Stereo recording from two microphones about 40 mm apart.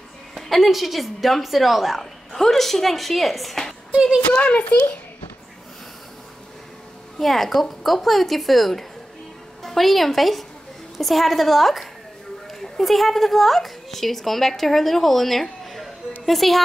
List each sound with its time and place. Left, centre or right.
0.3 s a woman's voice: centre
4.3 s a child's voice: left
7.2 s a woman's voice: centre